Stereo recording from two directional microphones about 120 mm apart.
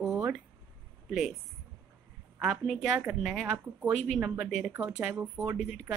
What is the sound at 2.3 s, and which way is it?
Speech, centre (ahead or behind).